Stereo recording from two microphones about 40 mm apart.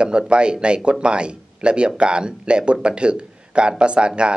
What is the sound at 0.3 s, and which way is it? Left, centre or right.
Speech, right.